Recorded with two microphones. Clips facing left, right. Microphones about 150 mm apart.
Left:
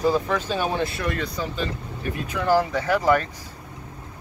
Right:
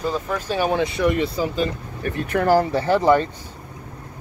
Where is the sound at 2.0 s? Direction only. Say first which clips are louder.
Right 7 dB; 55° right (ahead or behind).